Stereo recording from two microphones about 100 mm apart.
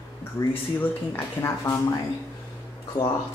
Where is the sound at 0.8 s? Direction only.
25° left (ahead or behind).